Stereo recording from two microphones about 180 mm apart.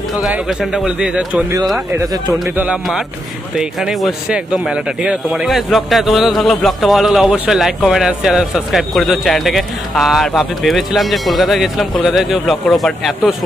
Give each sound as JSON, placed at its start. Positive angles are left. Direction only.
{"t": 0.2, "sound": "speech", "side_deg": -5}
{"t": 2.5, "sound": "a man's voice", "side_deg": -10}